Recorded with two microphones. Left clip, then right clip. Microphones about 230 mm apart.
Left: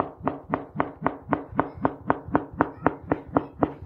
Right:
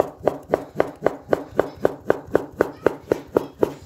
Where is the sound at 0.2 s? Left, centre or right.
Right.